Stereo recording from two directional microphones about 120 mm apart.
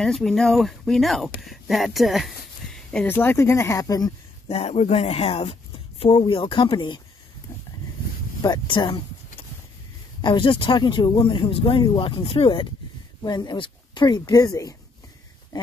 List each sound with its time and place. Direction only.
0.0 s speech: 5° left (ahead or behind)
3.1 s speech: 15° left (ahead or behind)
4.5 s speech: 65° left (ahead or behind)
6.0 s speech: 40° left (ahead or behind)
8.4 s a sound: 40° left (ahead or behind)
10.2 s speech: 45° left (ahead or behind)
13.2 s speech: 35° left (ahead or behind)
15.5 s a sound: 35° left (ahead or behind)